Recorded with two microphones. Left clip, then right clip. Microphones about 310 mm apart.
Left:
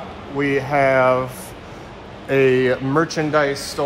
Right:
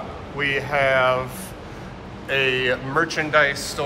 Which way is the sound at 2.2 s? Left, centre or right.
Left.